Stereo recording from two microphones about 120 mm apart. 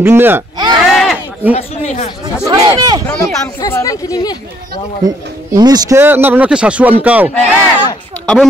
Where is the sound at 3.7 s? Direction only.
25° left (ahead or behind).